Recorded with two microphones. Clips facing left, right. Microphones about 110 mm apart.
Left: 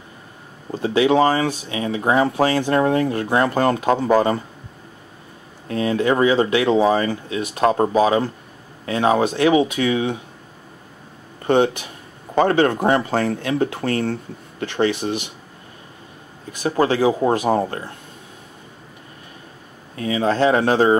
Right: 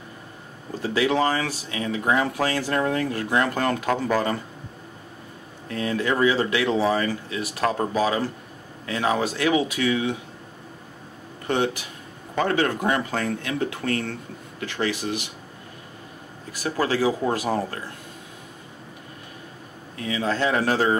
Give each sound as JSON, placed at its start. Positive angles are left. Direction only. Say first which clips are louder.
{"t": 0.8, "sound": "speech", "louder": "left 6 dB", "side_deg": 25}
{"t": 5.7, "sound": "speech", "louder": "left 6 dB", "side_deg": 25}
{"t": 11.4, "sound": "speech", "louder": "left 7 dB", "side_deg": 30}
{"t": 16.5, "sound": "speech", "louder": "left 5 dB", "side_deg": 20}
{"t": 20.0, "sound": "speech", "louder": "left 6 dB", "side_deg": 30}